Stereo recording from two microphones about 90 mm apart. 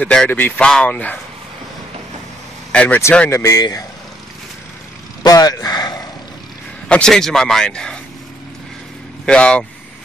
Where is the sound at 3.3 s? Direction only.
30° left (ahead or behind).